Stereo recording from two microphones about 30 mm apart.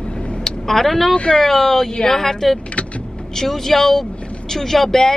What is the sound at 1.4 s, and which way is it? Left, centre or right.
Speech, centre.